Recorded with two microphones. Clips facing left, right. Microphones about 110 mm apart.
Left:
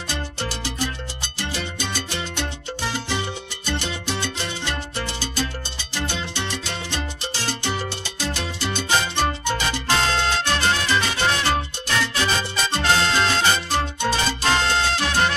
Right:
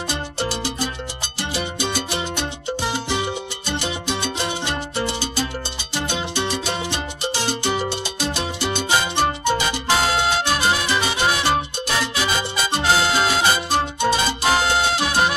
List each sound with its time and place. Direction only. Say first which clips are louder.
0.1 s music: right 2 dB; 15° right (ahead or behind)